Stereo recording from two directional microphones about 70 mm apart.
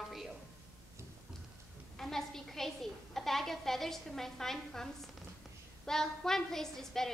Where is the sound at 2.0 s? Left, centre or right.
Centre.